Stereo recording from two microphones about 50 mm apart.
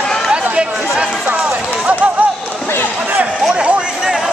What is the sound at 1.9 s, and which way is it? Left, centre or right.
Run, right.